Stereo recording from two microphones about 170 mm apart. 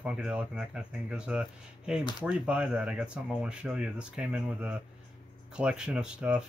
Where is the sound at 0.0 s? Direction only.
5° right (ahead or behind).